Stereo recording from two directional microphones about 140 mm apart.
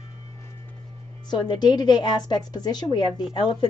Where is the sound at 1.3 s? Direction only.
30° left (ahead or behind).